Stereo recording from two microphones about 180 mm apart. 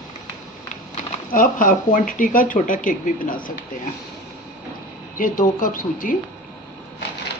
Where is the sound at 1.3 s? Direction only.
50° left (ahead or behind).